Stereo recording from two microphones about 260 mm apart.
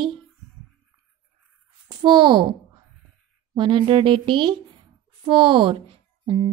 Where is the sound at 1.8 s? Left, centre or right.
Centre.